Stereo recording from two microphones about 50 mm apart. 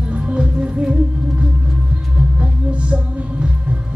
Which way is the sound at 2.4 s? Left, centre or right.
Right.